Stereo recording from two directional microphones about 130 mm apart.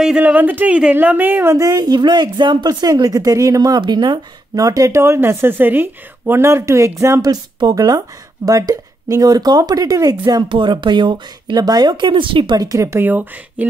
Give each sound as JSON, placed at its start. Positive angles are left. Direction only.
{"t": 0.0, "sound": "a woman's voice", "side_deg": -10}